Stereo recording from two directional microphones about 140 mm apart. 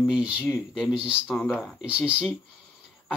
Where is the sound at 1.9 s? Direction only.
10° right (ahead or behind).